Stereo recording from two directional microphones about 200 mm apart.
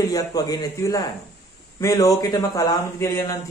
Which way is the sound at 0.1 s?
20° left (ahead or behind).